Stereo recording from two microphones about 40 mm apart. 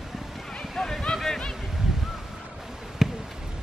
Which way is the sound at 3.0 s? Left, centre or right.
Centre.